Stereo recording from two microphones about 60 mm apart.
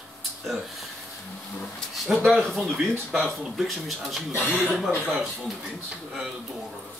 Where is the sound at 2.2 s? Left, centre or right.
Centre.